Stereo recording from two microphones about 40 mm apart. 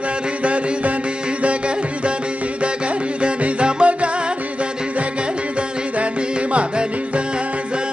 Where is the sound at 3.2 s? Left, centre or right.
Right.